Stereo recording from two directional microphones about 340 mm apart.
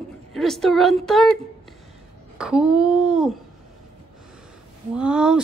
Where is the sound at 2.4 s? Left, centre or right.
Centre.